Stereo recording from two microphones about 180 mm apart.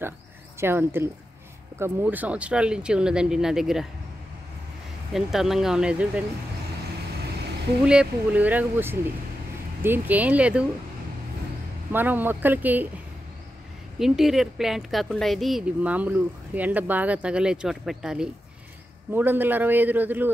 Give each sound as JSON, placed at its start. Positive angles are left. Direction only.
{"t": 0.6, "sound": "a woman's voice", "side_deg": -15}
{"t": 5.1, "sound": "a woman's voice", "side_deg": 0}
{"t": 7.8, "sound": "speech", "side_deg": -5}
{"t": 11.9, "sound": "speech", "side_deg": -10}
{"t": 13.9, "sound": "a woman's voice", "side_deg": 0}